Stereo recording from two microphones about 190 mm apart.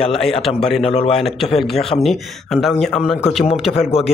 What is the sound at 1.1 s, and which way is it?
Speech, centre (ahead or behind).